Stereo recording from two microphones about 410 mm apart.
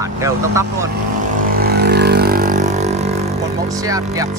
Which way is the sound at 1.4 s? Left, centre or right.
Right.